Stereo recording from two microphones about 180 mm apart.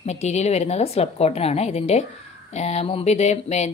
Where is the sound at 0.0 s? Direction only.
40° left (ahead or behind).